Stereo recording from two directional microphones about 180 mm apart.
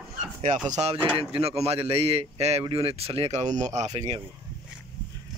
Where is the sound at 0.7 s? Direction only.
40° right (ahead or behind).